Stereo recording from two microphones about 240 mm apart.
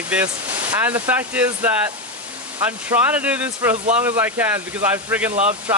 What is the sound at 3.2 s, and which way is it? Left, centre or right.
Speech, centre.